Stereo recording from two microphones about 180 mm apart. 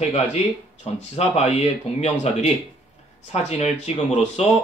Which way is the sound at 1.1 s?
35° left (ahead or behind).